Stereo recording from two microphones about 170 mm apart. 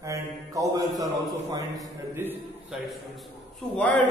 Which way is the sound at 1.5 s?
15° right (ahead or behind).